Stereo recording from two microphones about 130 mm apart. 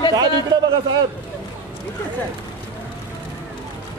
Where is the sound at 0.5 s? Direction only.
35° right (ahead or behind).